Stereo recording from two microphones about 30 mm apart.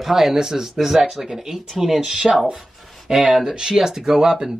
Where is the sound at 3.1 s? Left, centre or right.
Centre.